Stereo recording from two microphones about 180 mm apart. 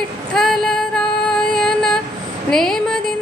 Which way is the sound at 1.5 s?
5° left (ahead or behind).